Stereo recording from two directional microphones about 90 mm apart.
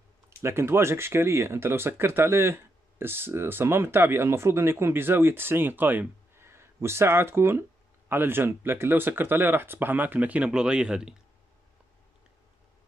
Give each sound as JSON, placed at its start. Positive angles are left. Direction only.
{"t": 0.4, "sound": "speech", "side_deg": -30}